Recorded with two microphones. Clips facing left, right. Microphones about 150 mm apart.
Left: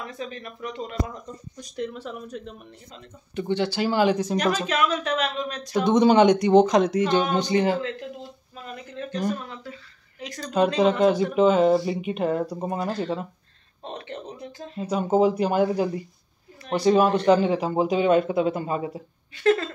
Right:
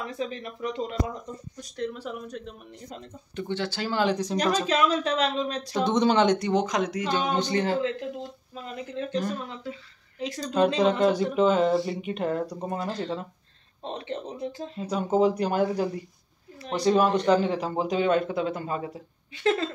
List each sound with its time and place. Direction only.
0.0 s speech: 30° right (ahead or behind)
2.2 s speech: centre (ahead or behind)
3.3 s speech: 15° left (ahead or behind)
4.6 s speech: 30° right (ahead or behind)
5.9 s speech: 10° left (ahead or behind)
6.5 s speech: 30° left (ahead or behind)
7.3 s speech: 15° left (ahead or behind)
9.5 s speech: 20° right (ahead or behind)
10.8 s speech: 5° left (ahead or behind)
13.8 s speech: 25° right (ahead or behind)
14.8 s speech: 5° left (ahead or behind)
19.3 s speech: 20° right (ahead or behind)